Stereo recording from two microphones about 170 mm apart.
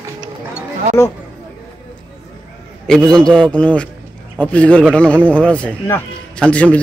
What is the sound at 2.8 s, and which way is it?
A man's voice, 5° left (ahead or behind).